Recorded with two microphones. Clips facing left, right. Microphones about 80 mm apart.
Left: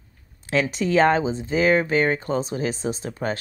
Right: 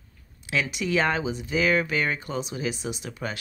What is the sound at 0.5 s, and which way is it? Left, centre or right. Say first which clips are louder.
Speech: left 5 dB; left.